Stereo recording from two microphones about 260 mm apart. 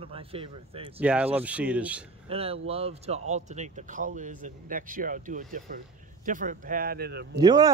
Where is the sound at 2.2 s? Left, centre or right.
Right.